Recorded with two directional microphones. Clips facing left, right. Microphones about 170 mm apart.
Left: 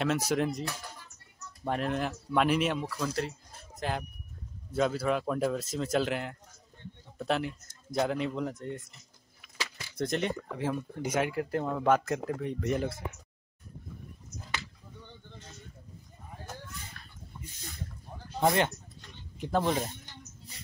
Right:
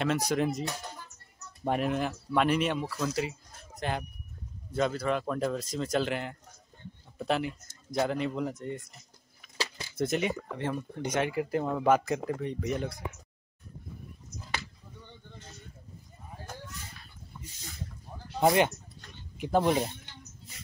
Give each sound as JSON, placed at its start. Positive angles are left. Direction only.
{"t": 0.0, "sound": "speech", "side_deg": 5}
{"t": 1.6, "sound": "speech", "side_deg": -15}
{"t": 1.9, "sound": "speech", "side_deg": 0}
{"t": 9.4, "sound": "a sound", "side_deg": -30}
{"t": 9.9, "sound": "speech", "side_deg": -5}
{"t": 17.0, "sound": "a sound", "side_deg": 55}
{"t": 19.3, "sound": "speech", "side_deg": -10}